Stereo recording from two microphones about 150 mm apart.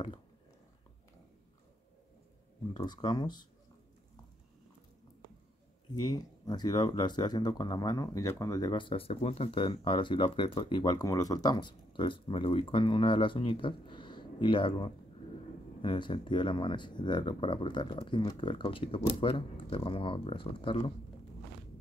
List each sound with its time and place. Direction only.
2.7 s speech: 30° left (ahead or behind)
5.9 s speech: 25° left (ahead or behind)